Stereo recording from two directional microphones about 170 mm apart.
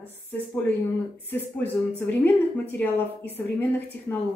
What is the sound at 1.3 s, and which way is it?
Speech, 10° left (ahead or behind).